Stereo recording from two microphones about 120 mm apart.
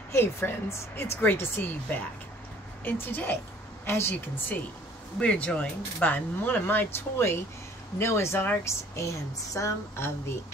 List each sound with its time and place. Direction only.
0.1 s speech: 20° left (ahead or behind)